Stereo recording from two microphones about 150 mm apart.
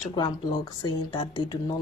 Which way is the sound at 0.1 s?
30° left (ahead or behind).